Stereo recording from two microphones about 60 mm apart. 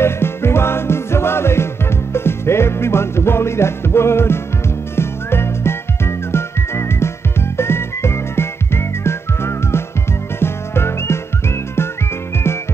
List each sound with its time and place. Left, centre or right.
0.0 s music: left
4.9 s whistling: left
10.4 s music: left